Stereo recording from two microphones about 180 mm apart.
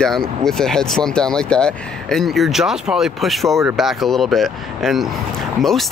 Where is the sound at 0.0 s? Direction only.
5° left (ahead or behind).